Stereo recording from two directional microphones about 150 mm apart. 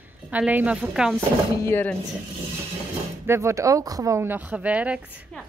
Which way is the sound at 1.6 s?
15° left (ahead or behind).